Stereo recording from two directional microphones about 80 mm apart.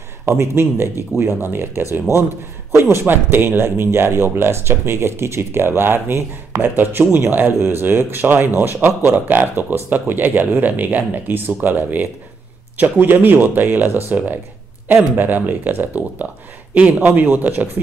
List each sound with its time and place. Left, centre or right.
0.3 s speech: right